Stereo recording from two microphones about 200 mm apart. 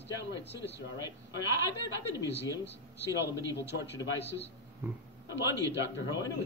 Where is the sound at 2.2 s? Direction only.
60° left (ahead or behind).